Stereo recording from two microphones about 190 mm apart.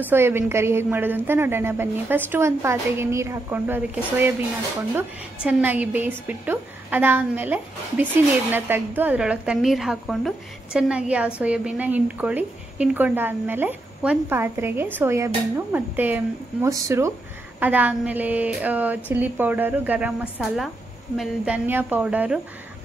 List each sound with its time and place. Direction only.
0.0 s a woman's voice: 10° right (ahead or behind)